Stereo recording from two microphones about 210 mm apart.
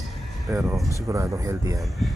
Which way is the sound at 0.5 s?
15° right (ahead or behind).